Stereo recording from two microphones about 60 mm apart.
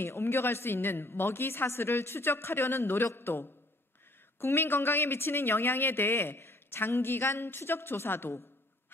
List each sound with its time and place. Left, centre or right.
0.0 s speech: left